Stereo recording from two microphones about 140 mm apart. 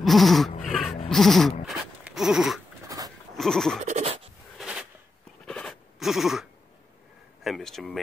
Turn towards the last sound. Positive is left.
turn(degrees=0)  # may be behind; listen again after turning